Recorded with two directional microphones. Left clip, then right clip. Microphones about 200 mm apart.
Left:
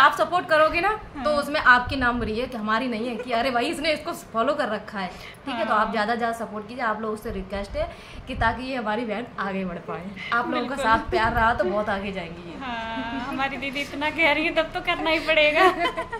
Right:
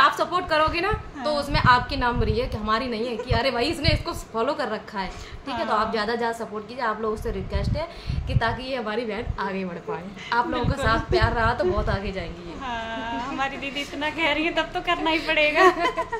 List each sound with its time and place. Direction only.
0.0 s a woman's voice: 10° right (ahead or behind)
8.3 s a woman's voice: 15° right (ahead or behind)
12.6 s a woman's voice: centre (ahead or behind)